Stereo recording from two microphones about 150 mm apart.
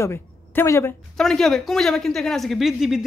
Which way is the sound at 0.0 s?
20° left (ahead or behind).